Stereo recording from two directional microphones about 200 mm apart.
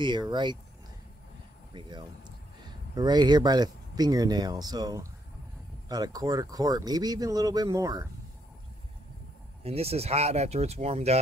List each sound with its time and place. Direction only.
0.0 s speech: 25° right (ahead or behind)
1.7 s speech: 25° right (ahead or behind)
9.6 s speech: 30° right (ahead or behind)